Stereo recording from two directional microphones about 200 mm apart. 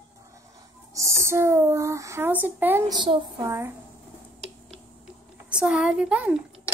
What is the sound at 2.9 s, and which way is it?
Speech, 20° right (ahead or behind).